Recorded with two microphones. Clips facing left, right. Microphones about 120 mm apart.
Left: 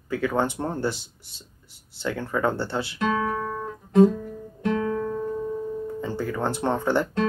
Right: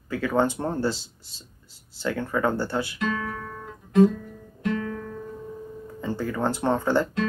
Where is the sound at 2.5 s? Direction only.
25° left (ahead or behind).